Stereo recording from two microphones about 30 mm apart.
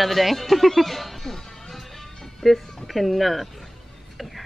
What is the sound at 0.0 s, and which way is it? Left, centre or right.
Speech, centre.